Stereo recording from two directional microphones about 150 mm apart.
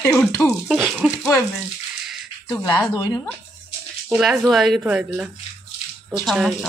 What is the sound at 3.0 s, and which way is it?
Speech, 25° left (ahead or behind).